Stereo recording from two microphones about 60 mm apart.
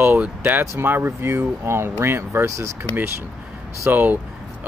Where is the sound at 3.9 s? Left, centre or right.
Right.